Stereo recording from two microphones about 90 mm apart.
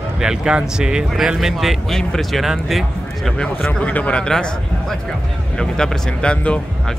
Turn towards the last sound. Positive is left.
turn(degrees=10)  # may be behind; listen again after turning